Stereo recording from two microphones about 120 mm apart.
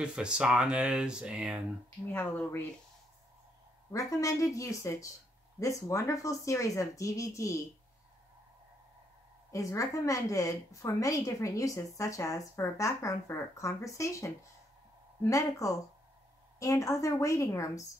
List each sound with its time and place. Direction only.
0.0 s speech: 10° right (ahead or behind)
2.1 s speech: 15° left (ahead or behind)
3.9 s a woman's voice: 25° left (ahead or behind)
9.5 s a woman's voice: 25° left (ahead or behind)